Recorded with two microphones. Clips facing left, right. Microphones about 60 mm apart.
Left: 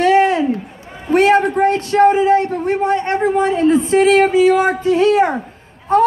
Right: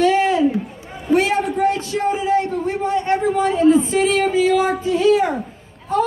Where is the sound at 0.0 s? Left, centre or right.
Left.